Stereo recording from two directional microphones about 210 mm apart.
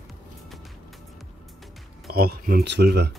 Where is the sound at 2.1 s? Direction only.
45° right (ahead or behind).